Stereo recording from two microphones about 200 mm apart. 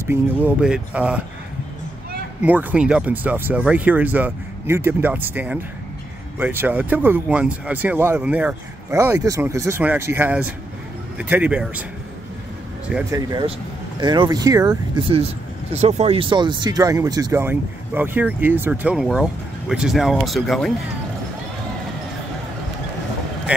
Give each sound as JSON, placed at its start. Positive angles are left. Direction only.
{"t": 0.0, "sound": "speech", "side_deg": -10}
{"t": 2.4, "sound": "speech", "side_deg": -5}
{"t": 13.1, "sound": "speech", "side_deg": -20}